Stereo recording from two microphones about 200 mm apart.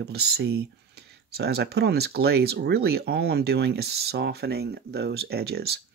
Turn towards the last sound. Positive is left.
turn(degrees=-55)  # may be behind; listen again after turning